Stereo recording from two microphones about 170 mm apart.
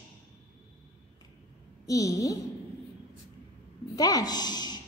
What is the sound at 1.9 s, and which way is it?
Speech, 20° left (ahead or behind).